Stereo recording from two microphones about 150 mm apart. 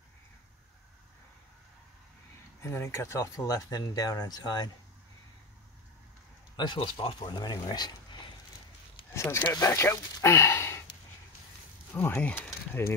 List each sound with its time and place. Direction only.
2.6 s speech: 20° left (ahead or behind)
6.5 s speech: 30° left (ahead or behind)
9.1 s speech: 15° left (ahead or behind)
11.9 s speech: 15° left (ahead or behind)